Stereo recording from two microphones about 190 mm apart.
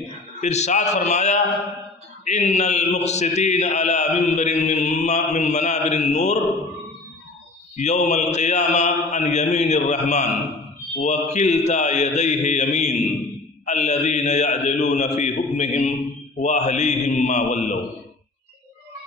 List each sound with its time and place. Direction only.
0.4 s a man's voice: 35° left (ahead or behind)
7.7 s a man's voice: 40° left (ahead or behind)